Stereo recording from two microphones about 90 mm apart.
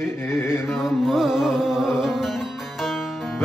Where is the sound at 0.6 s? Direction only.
5° right (ahead or behind).